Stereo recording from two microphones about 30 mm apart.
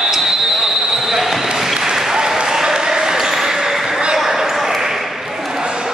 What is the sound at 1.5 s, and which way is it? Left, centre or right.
Applause, centre.